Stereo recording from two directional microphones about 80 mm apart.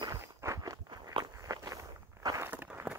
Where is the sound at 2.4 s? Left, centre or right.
Right.